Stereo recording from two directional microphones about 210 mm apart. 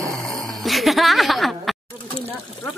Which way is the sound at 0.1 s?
Centre (ahead or behind).